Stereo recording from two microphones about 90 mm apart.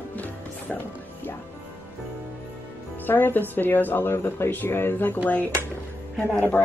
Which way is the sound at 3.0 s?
20° left (ahead or behind).